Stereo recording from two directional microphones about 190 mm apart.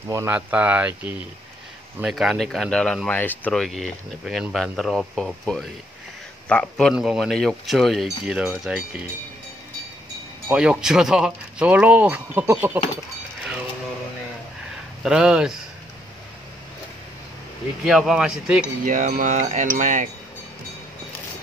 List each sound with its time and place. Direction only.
0.1 s speech: 10° right (ahead or behind)
10.5 s speech: 5° right (ahead or behind)
15.0 s speech: 5° right (ahead or behind)
17.8 s speech: centre (ahead or behind)
18.9 s wind chime: 45° right (ahead or behind)